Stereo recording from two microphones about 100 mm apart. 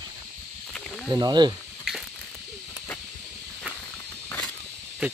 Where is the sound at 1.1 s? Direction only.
45° right (ahead or behind).